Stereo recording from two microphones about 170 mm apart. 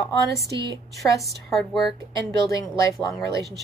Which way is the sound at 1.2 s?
Centre (ahead or behind).